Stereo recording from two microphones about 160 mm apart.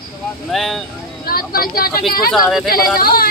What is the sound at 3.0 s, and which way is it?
Speech, 65° left (ahead or behind).